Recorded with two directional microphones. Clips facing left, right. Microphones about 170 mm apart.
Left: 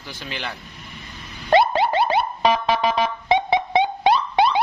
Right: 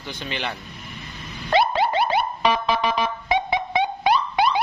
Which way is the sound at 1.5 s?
25° left (ahead or behind).